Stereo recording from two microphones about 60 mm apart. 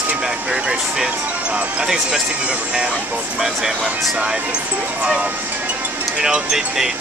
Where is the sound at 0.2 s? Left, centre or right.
Centre.